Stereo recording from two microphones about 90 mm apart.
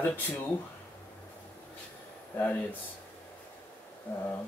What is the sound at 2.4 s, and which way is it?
Speech, 20° left (ahead or behind).